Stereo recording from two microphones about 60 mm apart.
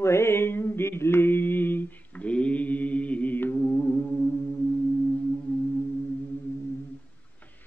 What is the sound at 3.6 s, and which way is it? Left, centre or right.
Music, left.